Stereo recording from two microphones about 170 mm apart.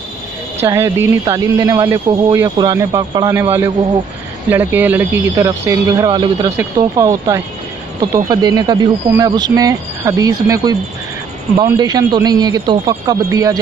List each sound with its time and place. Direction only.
0.6 s speech: 15° right (ahead or behind)